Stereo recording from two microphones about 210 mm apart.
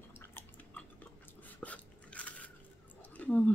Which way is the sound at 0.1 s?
10° left (ahead or behind).